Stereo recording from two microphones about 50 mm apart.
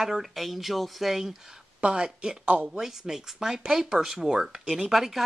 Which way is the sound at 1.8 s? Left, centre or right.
Centre.